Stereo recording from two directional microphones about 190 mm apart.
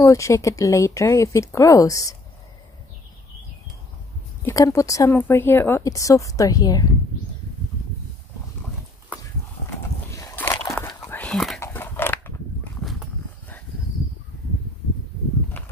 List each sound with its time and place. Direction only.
0.0 s speech: 15° left (ahead or behind)
4.5 s speech: 15° left (ahead or behind)
10.1 s a sound: 10° left (ahead or behind)
10.8 s whispering: 10° left (ahead or behind)
11.6 s dog: 10° left (ahead or behind)